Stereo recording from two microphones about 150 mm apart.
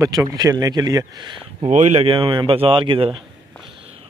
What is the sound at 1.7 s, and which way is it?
Speech, 50° right (ahead or behind).